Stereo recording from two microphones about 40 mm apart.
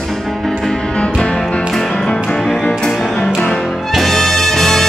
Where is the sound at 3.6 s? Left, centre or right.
Centre.